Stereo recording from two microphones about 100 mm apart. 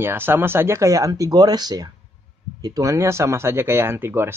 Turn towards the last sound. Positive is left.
turn(degrees=-25)  # may be behind; listen again after turning